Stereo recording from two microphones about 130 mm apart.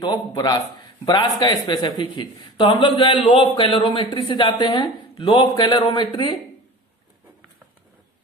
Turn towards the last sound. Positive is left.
turn(degrees=40)  # may be behind; listen again after turning